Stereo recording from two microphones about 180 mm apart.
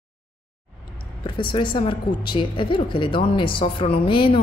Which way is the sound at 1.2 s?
25° left (ahead or behind).